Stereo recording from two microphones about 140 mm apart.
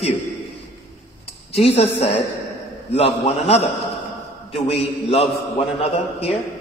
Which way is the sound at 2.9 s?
45° left (ahead or behind).